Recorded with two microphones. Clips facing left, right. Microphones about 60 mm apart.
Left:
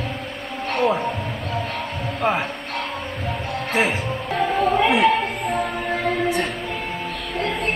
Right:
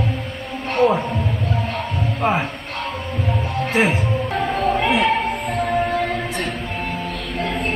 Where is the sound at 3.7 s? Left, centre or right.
Centre.